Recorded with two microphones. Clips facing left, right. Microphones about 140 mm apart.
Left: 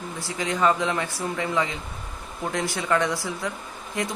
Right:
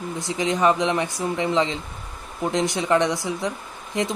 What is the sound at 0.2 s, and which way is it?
Speech, 20° right (ahead or behind).